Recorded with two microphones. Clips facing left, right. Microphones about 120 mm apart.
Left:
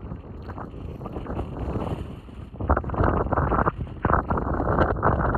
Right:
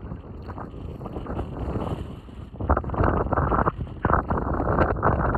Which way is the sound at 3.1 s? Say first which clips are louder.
Even; 5° left (ahead or behind).